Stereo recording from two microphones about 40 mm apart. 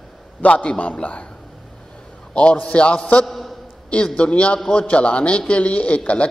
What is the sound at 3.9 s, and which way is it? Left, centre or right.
A man's voice, left.